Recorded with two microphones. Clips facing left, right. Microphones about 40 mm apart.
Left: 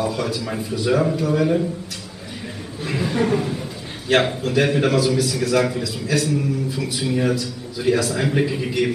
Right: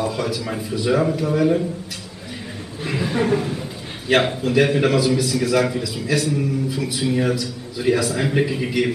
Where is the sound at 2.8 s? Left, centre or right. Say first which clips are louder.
Even; centre.